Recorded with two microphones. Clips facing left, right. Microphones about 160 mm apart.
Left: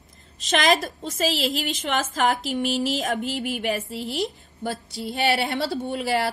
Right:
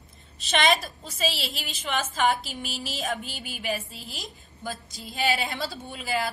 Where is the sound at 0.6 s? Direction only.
90° left.